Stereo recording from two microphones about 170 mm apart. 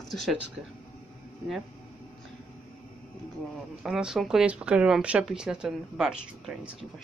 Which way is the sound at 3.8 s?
5° right (ahead or behind).